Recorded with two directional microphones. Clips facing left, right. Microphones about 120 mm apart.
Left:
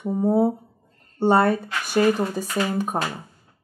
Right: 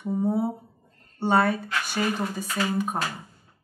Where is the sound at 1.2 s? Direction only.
40° left (ahead or behind).